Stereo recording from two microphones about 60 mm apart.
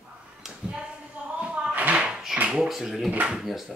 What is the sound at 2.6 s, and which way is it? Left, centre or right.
Speech, centre.